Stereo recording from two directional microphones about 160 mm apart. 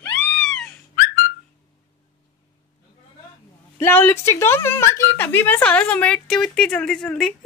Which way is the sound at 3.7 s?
15° left (ahead or behind).